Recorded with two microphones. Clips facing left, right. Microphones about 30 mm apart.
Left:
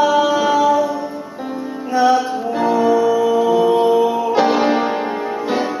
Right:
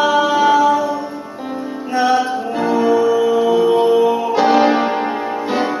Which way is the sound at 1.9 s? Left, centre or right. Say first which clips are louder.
Left 1 dB; centre.